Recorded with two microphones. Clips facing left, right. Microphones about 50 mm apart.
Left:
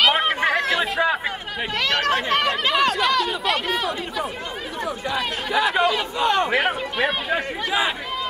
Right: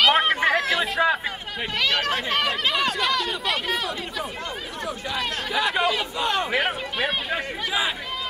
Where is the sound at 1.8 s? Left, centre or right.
Left.